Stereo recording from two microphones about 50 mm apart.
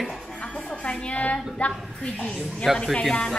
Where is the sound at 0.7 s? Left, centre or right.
Left.